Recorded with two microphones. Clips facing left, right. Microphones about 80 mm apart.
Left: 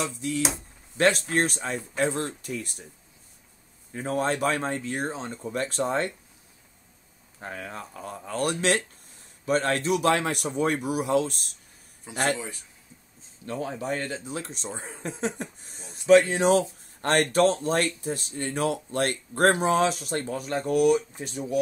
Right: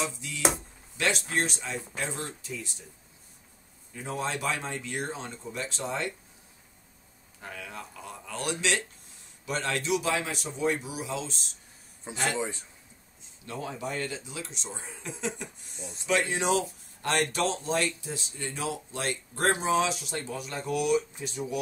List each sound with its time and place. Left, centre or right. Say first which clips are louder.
0.9 s speech: left 6 dB; left
3.9 s speech: left 6 dB; left
5.4 s speech: left 11 dB; left
7.3 s speech: left 4 dB; left
10.0 s speech: left 6 dB; left
12.4 s a man's voice: right 5 dB; right
13.5 s speech: left 5 dB; left